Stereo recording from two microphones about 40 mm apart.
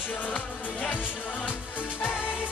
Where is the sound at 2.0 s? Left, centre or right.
Left.